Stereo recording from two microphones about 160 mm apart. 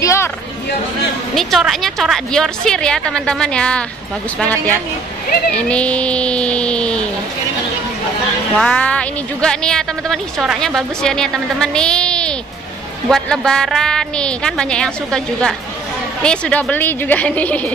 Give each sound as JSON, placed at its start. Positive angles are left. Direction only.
{"t": 0.0, "sound": "a sound", "side_deg": 20}
{"t": 1.3, "sound": "a woman's voice", "side_deg": 0}
{"t": 8.5, "sound": "a woman's voice", "side_deg": 5}